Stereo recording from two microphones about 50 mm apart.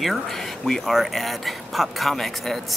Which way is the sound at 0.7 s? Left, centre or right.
Centre.